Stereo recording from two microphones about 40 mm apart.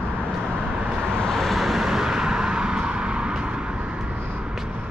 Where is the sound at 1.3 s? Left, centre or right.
Centre; by 4.4 s right.